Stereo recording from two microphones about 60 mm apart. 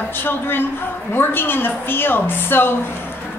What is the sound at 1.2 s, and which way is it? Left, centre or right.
A woman's voice, left.